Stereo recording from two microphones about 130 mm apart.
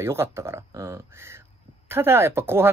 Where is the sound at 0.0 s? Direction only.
20° right (ahead or behind).